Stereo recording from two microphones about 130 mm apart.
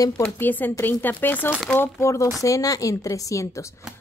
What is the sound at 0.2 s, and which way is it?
A woman's voice, 15° left (ahead or behind).